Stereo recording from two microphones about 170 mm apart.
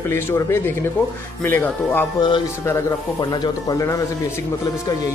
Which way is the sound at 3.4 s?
20° left (ahead or behind).